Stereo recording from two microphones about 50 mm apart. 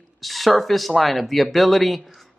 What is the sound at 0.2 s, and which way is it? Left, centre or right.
Speech, centre.